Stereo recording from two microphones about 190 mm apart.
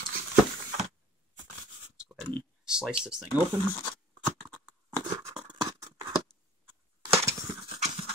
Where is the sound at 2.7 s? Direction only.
5° right (ahead or behind).